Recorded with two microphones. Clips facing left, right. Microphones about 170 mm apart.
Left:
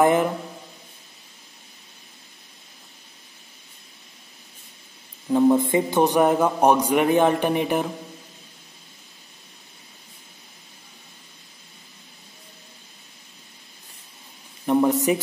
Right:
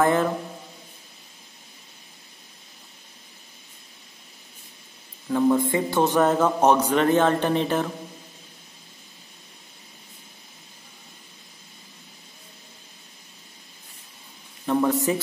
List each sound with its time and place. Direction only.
0.0 s a man's voice: 15° left (ahead or behind)
5.3 s a man's voice: 20° left (ahead or behind)
14.7 s a sound: 20° left (ahead or behind)